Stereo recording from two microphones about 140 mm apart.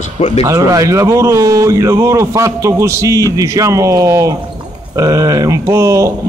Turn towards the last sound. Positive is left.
turn(degrees=-20)  # may be behind; listen again after turning